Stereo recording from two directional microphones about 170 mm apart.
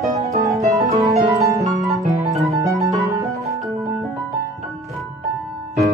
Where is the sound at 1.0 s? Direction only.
20° right (ahead or behind).